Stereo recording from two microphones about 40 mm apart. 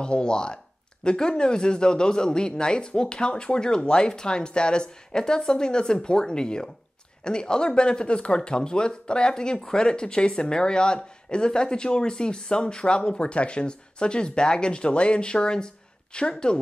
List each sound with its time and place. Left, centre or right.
0.0 s a man's voice: left